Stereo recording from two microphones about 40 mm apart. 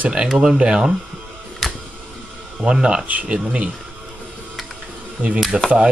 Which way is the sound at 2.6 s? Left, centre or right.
Right.